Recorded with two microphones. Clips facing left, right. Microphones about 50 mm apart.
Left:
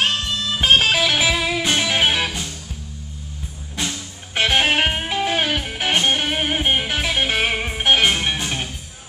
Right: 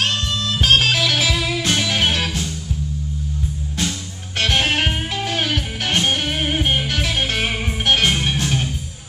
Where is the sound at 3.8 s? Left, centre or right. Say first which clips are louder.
Even; centre.